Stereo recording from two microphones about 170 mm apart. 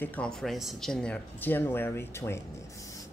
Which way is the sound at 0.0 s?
10° left (ahead or behind).